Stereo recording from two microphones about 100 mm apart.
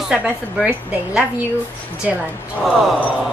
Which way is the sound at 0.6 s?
15° right (ahead or behind).